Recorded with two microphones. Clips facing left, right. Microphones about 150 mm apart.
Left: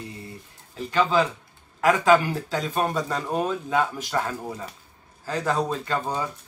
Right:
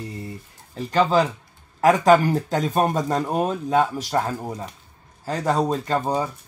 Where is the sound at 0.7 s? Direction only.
40° right (ahead or behind).